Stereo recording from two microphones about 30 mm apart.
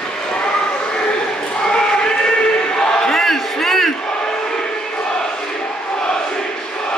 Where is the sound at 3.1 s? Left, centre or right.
Centre.